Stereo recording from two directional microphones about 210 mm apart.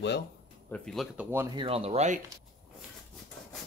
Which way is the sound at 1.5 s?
25° right (ahead or behind).